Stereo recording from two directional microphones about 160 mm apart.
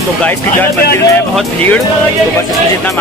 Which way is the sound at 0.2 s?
15° left (ahead or behind).